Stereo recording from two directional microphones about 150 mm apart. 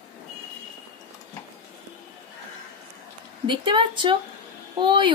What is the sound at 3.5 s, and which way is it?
A woman's voice, 30° right (ahead or behind).